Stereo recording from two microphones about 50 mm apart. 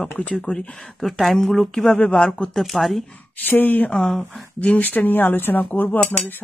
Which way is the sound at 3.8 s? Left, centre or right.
Centre.